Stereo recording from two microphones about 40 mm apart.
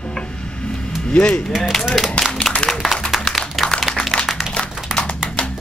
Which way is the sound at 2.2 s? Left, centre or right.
Left.